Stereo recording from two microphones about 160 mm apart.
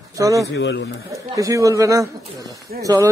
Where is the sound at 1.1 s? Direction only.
20° right (ahead or behind).